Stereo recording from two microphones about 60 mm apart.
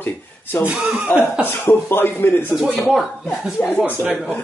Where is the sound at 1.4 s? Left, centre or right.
Left.